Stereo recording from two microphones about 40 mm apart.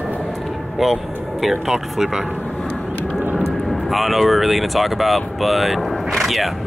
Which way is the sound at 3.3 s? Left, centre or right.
Centre.